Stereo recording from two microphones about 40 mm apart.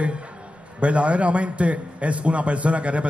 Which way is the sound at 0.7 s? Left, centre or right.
Right.